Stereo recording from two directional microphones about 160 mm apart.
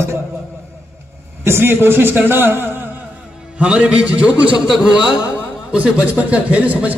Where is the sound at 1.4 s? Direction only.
15° right (ahead or behind).